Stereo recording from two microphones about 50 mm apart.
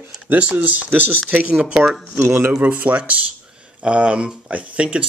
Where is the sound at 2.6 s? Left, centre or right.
Right.